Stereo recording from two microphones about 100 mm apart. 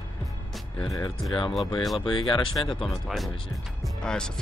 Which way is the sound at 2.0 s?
55° left (ahead or behind).